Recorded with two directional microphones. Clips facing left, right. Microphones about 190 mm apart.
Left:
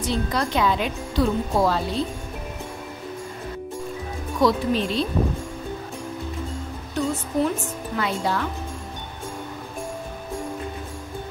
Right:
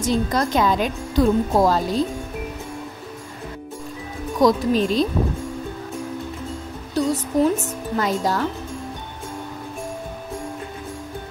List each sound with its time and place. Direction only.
0.0 s speech: 45° right (ahead or behind)
4.4 s speech: 40° right (ahead or behind)
6.9 s speech: 35° right (ahead or behind)